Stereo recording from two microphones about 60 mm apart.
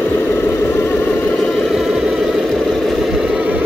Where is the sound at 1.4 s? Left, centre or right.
Centre.